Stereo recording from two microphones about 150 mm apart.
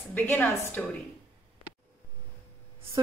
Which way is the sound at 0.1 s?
10° left (ahead or behind).